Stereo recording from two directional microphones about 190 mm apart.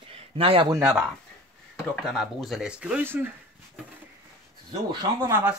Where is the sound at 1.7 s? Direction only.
5° left (ahead or behind).